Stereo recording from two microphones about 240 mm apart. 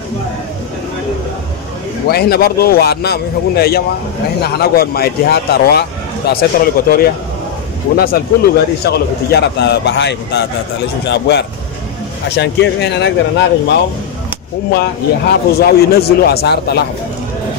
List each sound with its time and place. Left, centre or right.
2.0 s a man's voice: left
14.7 s speech: left